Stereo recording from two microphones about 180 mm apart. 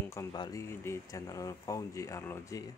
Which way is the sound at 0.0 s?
15° left (ahead or behind).